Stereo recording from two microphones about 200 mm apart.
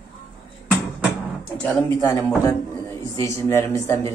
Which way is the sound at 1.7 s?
5° left (ahead or behind).